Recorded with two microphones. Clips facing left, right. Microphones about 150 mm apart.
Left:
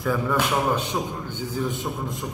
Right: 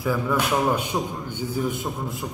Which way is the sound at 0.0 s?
5° right (ahead or behind).